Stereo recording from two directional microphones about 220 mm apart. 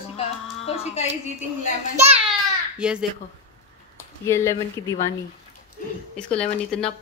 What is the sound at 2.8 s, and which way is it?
Speech, 5° right (ahead or behind).